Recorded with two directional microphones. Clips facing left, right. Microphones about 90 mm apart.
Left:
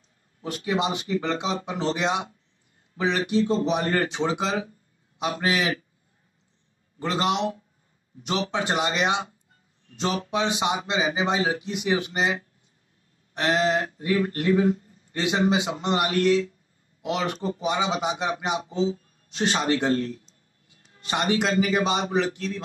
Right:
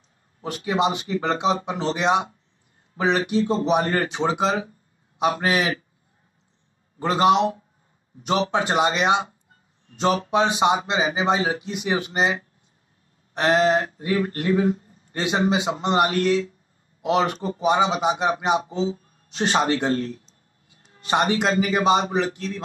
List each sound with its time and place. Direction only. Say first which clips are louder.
0.4 s speech: right 3 dB; 35° right (ahead or behind)
7.0 s speech: right 7 dB; 40° right (ahead or behind)